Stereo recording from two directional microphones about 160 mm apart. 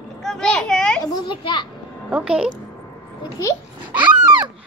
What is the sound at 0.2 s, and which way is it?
Children playing, 5° left (ahead or behind).